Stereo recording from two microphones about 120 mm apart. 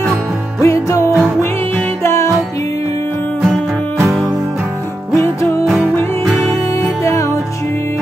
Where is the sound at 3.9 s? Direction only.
25° right (ahead or behind).